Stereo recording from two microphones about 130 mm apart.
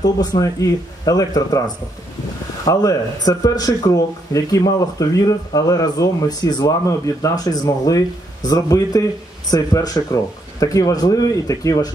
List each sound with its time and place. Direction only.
0.0 s speech: 30° left (ahead or behind)
2.6 s speech: 25° left (ahead or behind)